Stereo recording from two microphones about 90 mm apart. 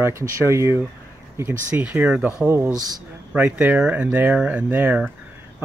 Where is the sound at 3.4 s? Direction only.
15° right (ahead or behind).